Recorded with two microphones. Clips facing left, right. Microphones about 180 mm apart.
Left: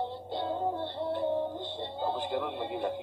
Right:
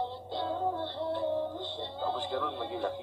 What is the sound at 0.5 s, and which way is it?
Music, 15° left (ahead or behind).